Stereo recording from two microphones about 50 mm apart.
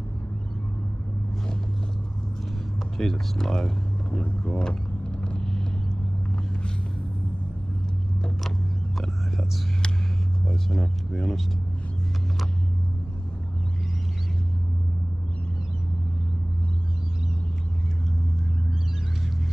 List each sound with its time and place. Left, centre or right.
3.0 s speech: centre
5.2 s vehicle: left
8.5 s vehicle: centre
10.4 s speech: centre